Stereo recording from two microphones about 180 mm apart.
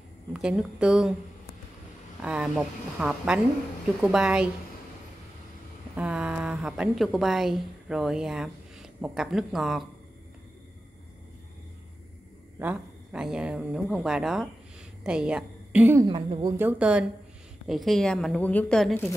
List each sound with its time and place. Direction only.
0.3 s speech: 5° right (ahead or behind)
2.2 s speech: 5° right (ahead or behind)
5.9 s speech: 5° right (ahead or behind)
12.5 s a woman's voice: 5° right (ahead or behind)
16.1 s a woman's voice: 30° right (ahead or behind)
16.5 s a woman's voice: 10° right (ahead or behind)